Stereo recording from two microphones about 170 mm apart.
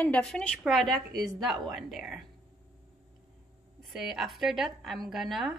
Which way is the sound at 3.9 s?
Centre (ahead or behind).